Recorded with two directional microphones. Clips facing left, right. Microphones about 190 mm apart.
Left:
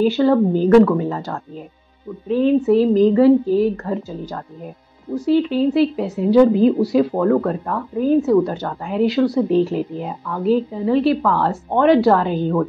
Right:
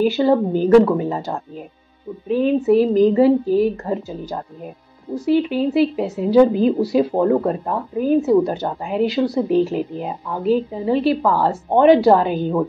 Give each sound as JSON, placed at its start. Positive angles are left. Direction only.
{"t": 0.0, "sound": "a woman's voice", "side_deg": -15}
{"t": 6.1, "sound": "a woman's voice", "side_deg": 0}
{"t": 7.0, "sound": "speech", "side_deg": -20}
{"t": 9.0, "sound": "a woman's voice", "side_deg": 0}
{"t": 9.3, "sound": "a woman's voice", "side_deg": -20}
{"t": 10.5, "sound": "a woman's voice", "side_deg": 0}
{"t": 12.0, "sound": "a woman's voice", "side_deg": -15}